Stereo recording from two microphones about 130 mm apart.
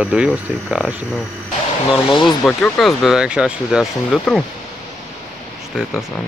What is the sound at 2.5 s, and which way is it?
Speech, 5° left (ahead or behind).